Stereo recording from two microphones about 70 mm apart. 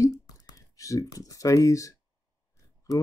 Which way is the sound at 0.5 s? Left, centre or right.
Left.